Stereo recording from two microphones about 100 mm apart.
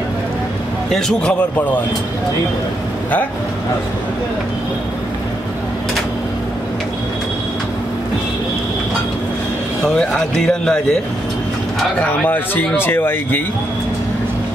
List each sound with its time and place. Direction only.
0.9 s a man's voice: 5° left (ahead or behind)
9.8 s speech: 10° left (ahead or behind)
12.0 s speech: 15° left (ahead or behind)